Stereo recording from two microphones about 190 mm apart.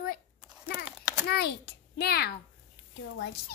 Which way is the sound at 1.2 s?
60° left (ahead or behind).